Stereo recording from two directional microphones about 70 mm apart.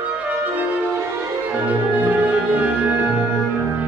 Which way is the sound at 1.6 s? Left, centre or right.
Right.